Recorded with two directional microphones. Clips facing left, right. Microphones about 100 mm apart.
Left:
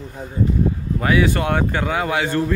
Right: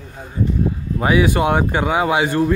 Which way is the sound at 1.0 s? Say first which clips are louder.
Right 3 dB; 20° right (ahead or behind).